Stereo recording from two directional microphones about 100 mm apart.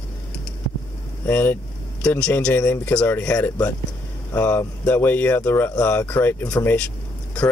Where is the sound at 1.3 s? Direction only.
20° left (ahead or behind).